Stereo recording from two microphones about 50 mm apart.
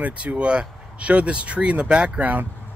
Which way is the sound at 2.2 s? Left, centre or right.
Right.